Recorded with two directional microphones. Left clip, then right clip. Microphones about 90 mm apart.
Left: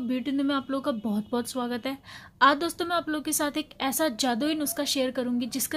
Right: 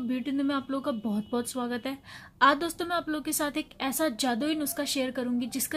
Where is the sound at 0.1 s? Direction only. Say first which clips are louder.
Left 2 dB; 25° left (ahead or behind).